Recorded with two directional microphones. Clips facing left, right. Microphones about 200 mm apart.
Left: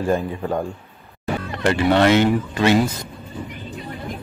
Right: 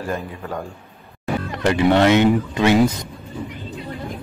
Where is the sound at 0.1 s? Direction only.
25° left (ahead or behind).